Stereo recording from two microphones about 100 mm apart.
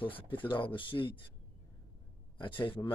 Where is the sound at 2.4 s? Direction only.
55° left (ahead or behind).